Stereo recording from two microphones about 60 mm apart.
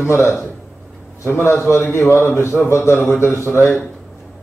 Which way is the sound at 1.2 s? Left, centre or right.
Left.